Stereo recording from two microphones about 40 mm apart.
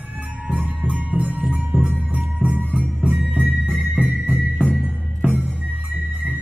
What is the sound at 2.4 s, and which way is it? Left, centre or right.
Music, right.